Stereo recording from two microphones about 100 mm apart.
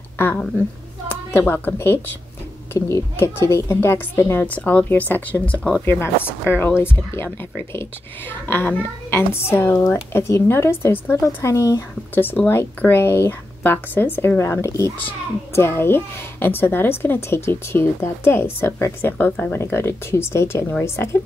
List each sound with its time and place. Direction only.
0.2 s a woman's voice: 20° left (ahead or behind)
5.9 s a child's voice: 25° left (ahead or behind)